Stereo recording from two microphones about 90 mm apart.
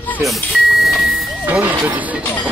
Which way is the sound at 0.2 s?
Centre (ahead or behind).